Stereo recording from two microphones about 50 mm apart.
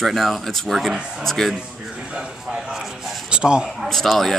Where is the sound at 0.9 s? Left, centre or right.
Centre.